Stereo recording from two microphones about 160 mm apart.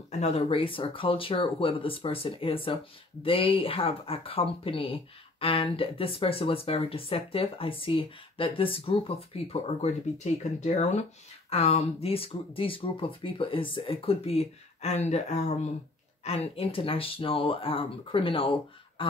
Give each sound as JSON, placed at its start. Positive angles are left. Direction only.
{"t": 0.2, "sound": "speech", "side_deg": 40}